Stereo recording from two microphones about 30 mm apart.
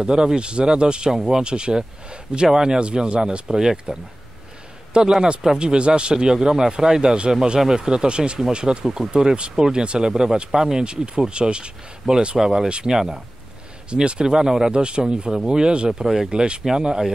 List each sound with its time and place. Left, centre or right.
0.0 s speech: right
1.1 s speech: centre
1.4 s speech: right
2.8 s speech: right
3.4 s speech: centre
4.9 s speech: right
8.8 s speech: centre
9.1 s speech: right
10.8 s speech: right
12.4 s speech: centre
13.8 s speech: right
14.7 s speech: right
15.9 s speech: centre
16.3 s speech: right